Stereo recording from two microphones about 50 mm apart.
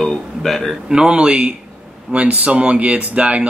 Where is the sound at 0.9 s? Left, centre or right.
Centre.